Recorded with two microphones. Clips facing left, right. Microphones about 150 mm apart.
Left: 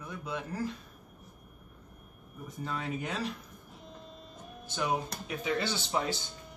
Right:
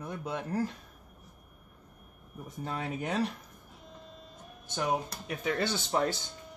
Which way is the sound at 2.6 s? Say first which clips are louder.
Right 1 dB; 55° right (ahead or behind).